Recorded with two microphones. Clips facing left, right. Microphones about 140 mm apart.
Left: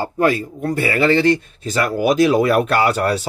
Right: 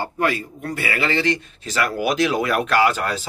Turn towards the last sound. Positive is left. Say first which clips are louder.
# left 2 dB
turn(degrees=35)  # may be behind; listen again after turning